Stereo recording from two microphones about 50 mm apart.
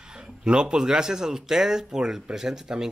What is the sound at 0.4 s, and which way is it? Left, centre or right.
Speech, centre.